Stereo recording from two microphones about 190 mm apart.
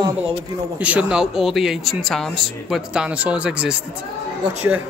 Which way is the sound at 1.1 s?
5° right (ahead or behind).